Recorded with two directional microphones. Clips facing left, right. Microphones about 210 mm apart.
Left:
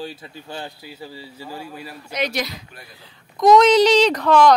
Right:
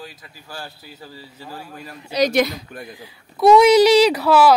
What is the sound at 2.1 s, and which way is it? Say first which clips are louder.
Speech: right 7 dB; 50° right (ahead or behind).